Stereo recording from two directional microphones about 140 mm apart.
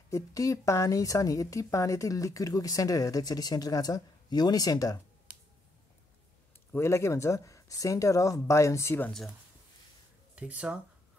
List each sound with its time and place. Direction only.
0.1 s a woman's voice: 25° left (ahead or behind)
6.7 s a woman's voice: 20° left (ahead or behind)
10.3 s speech: 10° right (ahead or behind)